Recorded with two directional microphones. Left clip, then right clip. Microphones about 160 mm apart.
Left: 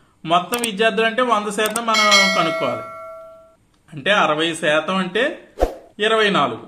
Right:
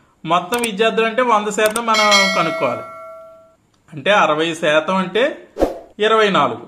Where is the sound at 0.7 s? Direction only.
40° right (ahead or behind).